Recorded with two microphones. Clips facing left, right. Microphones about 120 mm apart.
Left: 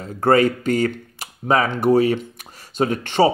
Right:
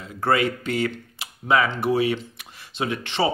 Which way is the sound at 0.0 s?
40° left (ahead or behind).